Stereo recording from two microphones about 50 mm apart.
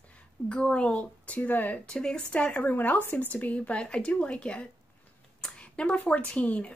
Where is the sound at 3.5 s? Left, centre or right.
Left.